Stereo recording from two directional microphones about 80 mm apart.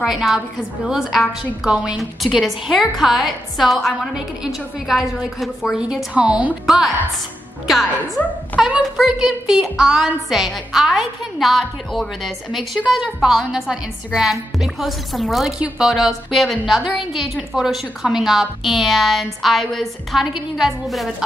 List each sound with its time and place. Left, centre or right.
0.0 s a woman's voice: centre
6.1 s speech: centre
6.6 s a woman's voice: centre
8.5 s a child's voice: left
8.9 s a woman's voice: centre